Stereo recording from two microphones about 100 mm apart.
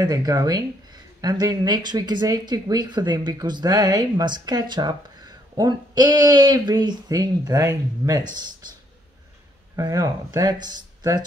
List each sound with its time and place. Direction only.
0.0 s speech: 35° right (ahead or behind)
9.8 s speech: 40° right (ahead or behind)